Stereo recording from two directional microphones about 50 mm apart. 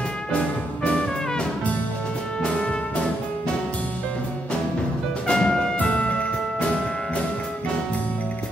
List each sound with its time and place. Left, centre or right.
2.4 s music: left
5.2 s music: centre